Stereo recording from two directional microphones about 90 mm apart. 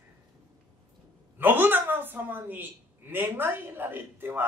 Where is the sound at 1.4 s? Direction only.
20° right (ahead or behind).